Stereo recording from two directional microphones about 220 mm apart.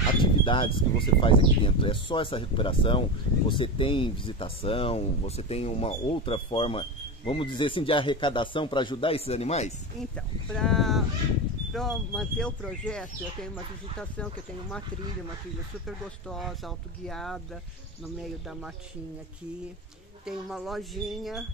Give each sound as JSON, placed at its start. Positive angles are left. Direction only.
{"t": 0.2, "sound": "speech", "side_deg": 20}
{"t": 10.1, "sound": "speech", "side_deg": 5}
{"t": 16.3, "sound": "speech", "side_deg": 0}
{"t": 20.2, "sound": "speech", "side_deg": 0}